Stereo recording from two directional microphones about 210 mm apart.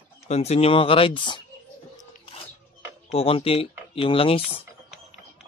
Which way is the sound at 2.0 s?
30° left (ahead or behind).